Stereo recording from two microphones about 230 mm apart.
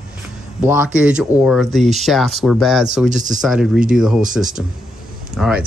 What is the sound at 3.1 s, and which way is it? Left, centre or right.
Speech, right.